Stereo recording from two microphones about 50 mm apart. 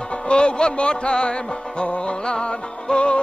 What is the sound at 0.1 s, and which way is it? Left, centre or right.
Music, centre.